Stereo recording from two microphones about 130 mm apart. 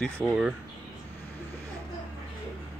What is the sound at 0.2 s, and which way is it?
Speech, 20° left (ahead or behind).